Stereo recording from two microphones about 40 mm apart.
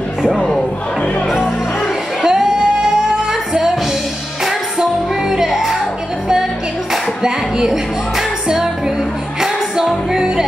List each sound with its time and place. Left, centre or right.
2.2 s music: centre
5.3 s music: centre
6.9 s music: centre
10.1 s music: centre